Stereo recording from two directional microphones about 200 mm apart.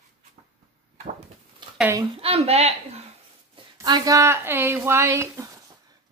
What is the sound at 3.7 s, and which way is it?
A woman's voice, 20° right (ahead or behind).